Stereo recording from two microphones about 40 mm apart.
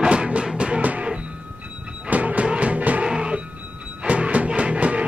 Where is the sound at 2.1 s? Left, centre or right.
Right.